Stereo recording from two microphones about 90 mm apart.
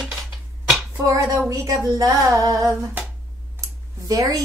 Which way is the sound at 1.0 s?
35° right (ahead or behind).